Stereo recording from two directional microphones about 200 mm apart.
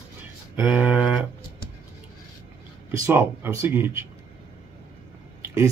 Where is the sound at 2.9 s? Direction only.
10° right (ahead or behind).